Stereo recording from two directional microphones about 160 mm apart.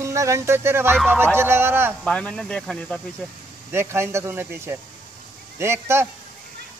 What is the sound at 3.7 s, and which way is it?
A man's voice, 15° right (ahead or behind).